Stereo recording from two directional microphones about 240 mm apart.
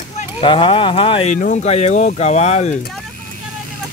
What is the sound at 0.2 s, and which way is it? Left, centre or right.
Speech, centre.